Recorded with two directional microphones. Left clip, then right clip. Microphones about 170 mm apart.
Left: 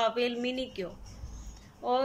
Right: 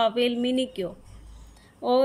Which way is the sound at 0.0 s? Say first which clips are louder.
Right 5 dB; 15° right (ahead or behind).